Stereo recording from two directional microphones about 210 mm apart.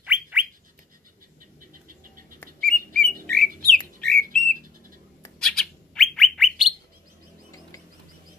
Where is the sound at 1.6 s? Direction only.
40° right (ahead or behind).